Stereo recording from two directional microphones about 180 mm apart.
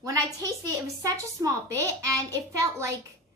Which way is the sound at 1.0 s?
15° right (ahead or behind).